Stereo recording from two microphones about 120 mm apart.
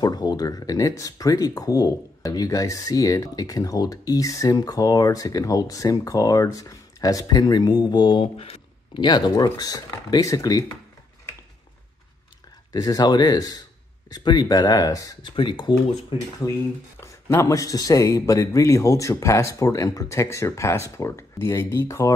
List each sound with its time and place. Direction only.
0.0 s speech: 35° left (ahead or behind)
8.4 s a sound: 50° left (ahead or behind)
9.0 s speech: 40° left (ahead or behind)
12.7 s speech: 30° left (ahead or behind)
15.3 s speech: 40° left (ahead or behind)
17.0 s speech: 25° left (ahead or behind)